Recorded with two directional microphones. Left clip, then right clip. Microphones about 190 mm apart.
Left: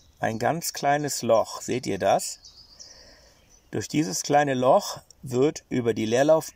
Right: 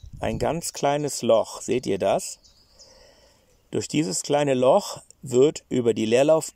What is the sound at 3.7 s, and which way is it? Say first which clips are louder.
Speech: right 2 dB; 5° right (ahead or behind).